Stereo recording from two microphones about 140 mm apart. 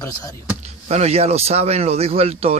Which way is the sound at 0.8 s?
50° right (ahead or behind).